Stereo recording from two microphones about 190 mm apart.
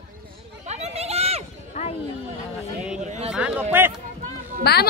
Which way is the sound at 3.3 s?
5° right (ahead or behind).